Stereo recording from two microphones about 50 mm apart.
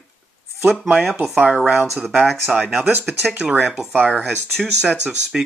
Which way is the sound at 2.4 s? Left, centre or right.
Centre.